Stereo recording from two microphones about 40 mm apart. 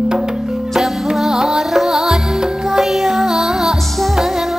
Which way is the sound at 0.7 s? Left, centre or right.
Centre.